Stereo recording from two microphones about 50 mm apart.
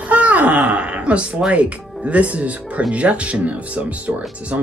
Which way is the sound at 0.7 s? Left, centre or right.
Right.